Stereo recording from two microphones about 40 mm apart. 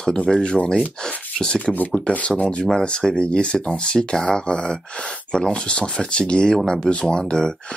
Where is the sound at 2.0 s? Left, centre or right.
Left.